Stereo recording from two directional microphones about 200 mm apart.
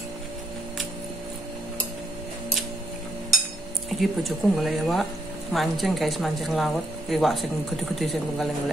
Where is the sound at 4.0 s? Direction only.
Centre (ahead or behind).